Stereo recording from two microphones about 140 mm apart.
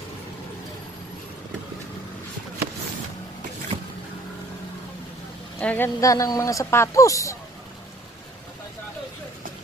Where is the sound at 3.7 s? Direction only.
30° right (ahead or behind).